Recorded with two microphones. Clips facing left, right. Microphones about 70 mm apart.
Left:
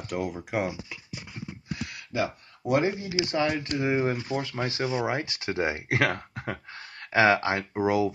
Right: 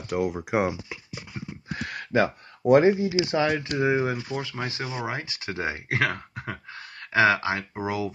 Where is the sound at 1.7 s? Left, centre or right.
Right.